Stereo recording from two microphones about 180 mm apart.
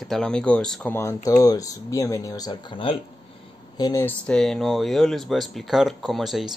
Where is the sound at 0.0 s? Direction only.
Centre (ahead or behind); by 4.0 s 20° left (ahead or behind).